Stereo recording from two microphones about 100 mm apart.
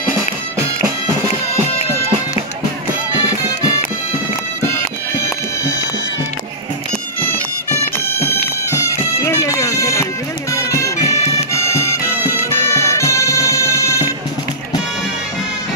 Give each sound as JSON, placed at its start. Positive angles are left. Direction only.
{"t": 5.1, "sound": "music", "side_deg": 30}
{"t": 7.7, "sound": "music", "side_deg": 30}